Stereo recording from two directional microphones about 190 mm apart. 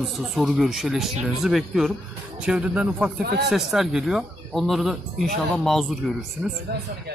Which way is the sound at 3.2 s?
60° right (ahead or behind).